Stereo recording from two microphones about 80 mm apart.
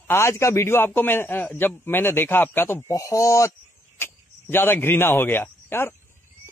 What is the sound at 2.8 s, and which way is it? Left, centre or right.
Speech, left.